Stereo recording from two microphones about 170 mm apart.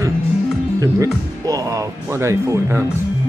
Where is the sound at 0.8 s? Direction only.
20° right (ahead or behind).